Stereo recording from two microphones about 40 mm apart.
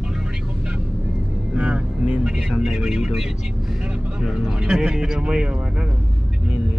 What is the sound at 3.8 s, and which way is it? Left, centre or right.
Vehicle, right.